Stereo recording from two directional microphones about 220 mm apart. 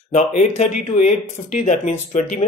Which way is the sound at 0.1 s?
30° left (ahead or behind).